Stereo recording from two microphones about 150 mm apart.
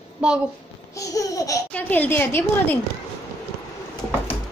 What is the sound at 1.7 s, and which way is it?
A woman's voice, 10° left (ahead or behind).